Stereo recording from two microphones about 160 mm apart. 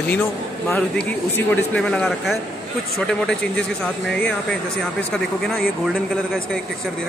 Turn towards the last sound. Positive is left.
turn(degrees=5)  # may be behind; listen again after turning